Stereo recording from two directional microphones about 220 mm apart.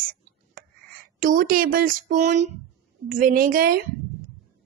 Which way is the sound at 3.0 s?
40° right (ahead or behind).